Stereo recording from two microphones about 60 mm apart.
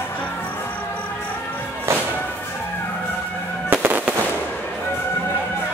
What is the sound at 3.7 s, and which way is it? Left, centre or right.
Fireworks, right.